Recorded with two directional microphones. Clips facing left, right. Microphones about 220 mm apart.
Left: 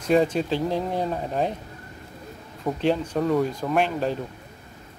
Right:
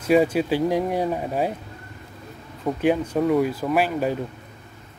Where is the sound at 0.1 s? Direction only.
5° right (ahead or behind).